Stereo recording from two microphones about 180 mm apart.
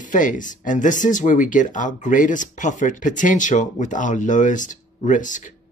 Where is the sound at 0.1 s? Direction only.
45° left (ahead or behind).